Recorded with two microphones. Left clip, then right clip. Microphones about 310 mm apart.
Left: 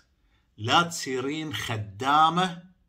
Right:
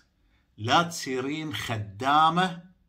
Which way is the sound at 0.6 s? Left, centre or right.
Centre.